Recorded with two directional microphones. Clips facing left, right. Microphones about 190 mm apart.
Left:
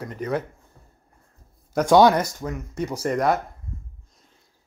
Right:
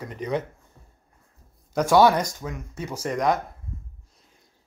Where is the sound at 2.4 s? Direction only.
10° right (ahead or behind).